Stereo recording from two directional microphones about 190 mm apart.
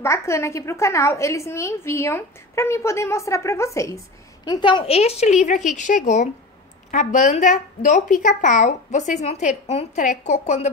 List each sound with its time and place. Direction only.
0.0 s a woman's voice: 15° left (ahead or behind); by 10.7 s 40° left (ahead or behind)